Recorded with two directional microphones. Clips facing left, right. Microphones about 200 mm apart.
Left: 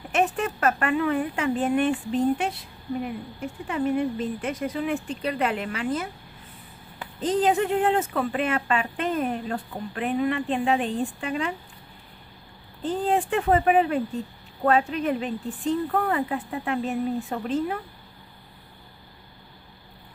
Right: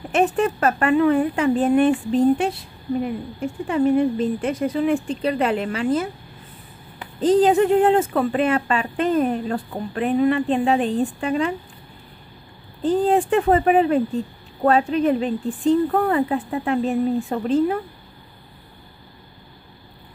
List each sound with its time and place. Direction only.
0.1 s speech: 30° right (ahead or behind)
7.2 s speech: 35° right (ahead or behind)
12.8 s speech: 35° right (ahead or behind)